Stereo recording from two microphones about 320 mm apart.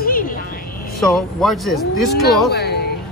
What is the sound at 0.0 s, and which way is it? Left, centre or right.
Vehicle, left.